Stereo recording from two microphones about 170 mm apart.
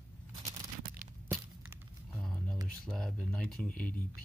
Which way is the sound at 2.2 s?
Centre (ahead or behind).